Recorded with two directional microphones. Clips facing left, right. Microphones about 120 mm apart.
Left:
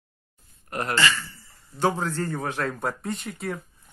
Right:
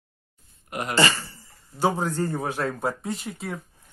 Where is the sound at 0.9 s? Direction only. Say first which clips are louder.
Right 4 dB; 35° right (ahead or behind).